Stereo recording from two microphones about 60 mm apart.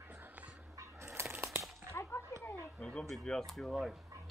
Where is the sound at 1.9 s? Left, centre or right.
Left.